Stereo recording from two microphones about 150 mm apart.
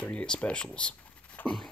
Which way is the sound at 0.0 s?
10° left (ahead or behind).